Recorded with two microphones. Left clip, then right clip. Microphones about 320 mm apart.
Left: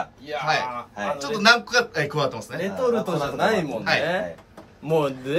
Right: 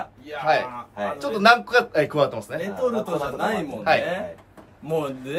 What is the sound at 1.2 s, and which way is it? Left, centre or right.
A man's voice, centre.